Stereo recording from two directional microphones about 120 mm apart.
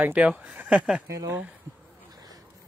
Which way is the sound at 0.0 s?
10° right (ahead or behind).